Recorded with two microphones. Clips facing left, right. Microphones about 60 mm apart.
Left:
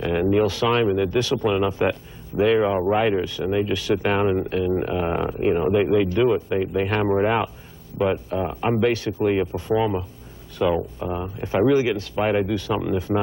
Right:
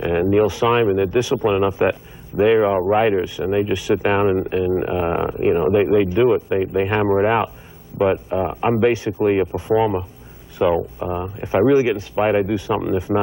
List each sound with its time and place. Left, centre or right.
0.0 s speech: centre
6.0 s speech: centre